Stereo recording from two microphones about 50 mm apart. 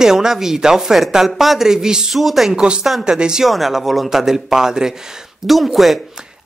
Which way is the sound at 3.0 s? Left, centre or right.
Centre.